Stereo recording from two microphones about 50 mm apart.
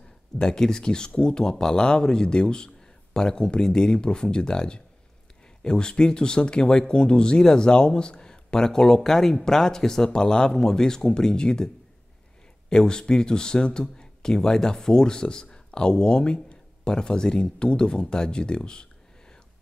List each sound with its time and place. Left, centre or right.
0.4 s speech: centre